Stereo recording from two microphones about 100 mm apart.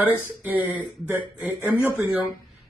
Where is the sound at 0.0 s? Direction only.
15° right (ahead or behind).